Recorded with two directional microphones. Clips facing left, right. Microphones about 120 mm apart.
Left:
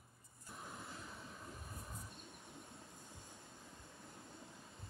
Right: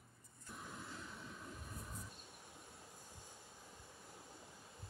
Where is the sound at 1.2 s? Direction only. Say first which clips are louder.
Even; 25° left (ahead or behind).